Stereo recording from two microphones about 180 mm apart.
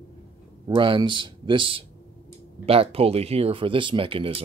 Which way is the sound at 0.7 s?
25° right (ahead or behind).